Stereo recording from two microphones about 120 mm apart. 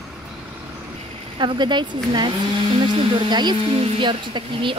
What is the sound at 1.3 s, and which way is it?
Speech, 40° right (ahead or behind).